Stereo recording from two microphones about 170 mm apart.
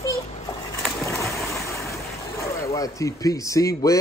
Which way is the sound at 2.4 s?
15° left (ahead or behind).